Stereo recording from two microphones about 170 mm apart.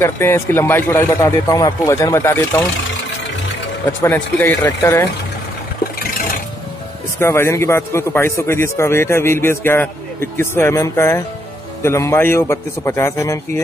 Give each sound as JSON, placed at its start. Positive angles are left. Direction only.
{"t": 0.0, "sound": "a man's voice", "side_deg": 15}
{"t": 4.0, "sound": "a man's voice", "side_deg": 15}
{"t": 5.9, "sound": "a sound", "side_deg": 55}
{"t": 7.2, "sound": "a man's voice", "side_deg": 15}